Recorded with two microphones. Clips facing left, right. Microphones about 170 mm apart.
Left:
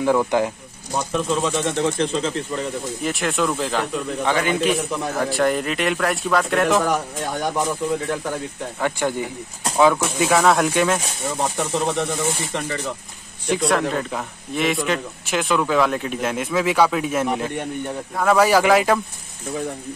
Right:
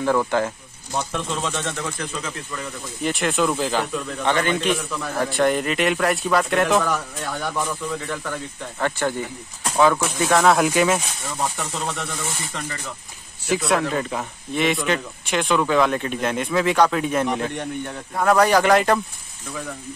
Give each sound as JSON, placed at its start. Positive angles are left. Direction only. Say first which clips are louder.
{"t": 0.0, "sound": "speech", "louder": "left 2 dB", "side_deg": 10}
{"t": 1.8, "sound": "speech", "louder": "left 9 dB", "side_deg": 25}
{"t": 3.0, "sound": "a man's voice", "louder": "right 2 dB", "side_deg": 0}
{"t": 6.8, "sound": "speech", "louder": "left 3 dB", "side_deg": 15}
{"t": 10.4, "sound": "a man's voice", "louder": "even", "side_deg": 0}
{"t": 11.5, "sound": "speech", "louder": "left 6 dB", "side_deg": 20}
{"t": 13.5, "sound": "a man's voice", "louder": "left 1 dB", "side_deg": -5}